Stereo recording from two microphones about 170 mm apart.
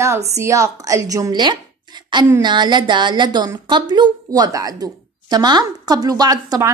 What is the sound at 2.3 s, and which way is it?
A woman's voice, 25° right (ahead or behind).